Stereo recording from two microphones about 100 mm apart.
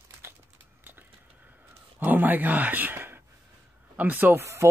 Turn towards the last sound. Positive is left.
turn(degrees=-30)  # may be behind; listen again after turning